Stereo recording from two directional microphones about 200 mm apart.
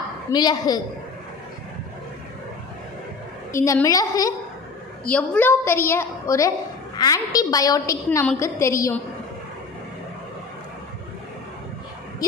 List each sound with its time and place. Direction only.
0.3 s a woman's voice: 20° left (ahead or behind)
3.5 s a woman's voice: 15° left (ahead or behind)
5.0 s a woman's voice: 5° left (ahead or behind)
12.2 s speech: 20° left (ahead or behind)